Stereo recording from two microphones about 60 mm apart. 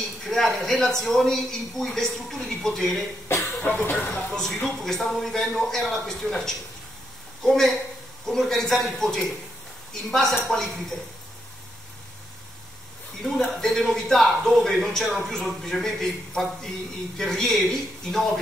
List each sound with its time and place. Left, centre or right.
0.2 s speech: centre
3.3 s a sound: left
4.1 s a man's voice: centre
13.2 s a man's voice: centre